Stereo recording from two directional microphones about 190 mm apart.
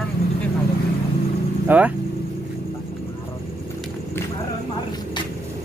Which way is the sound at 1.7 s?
10° right (ahead or behind).